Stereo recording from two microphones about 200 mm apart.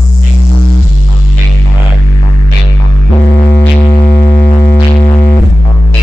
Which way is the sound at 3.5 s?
50° left (ahead or behind).